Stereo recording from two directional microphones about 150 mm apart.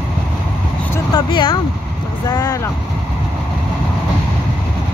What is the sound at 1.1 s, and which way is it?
Vehicle, 30° left (ahead or behind).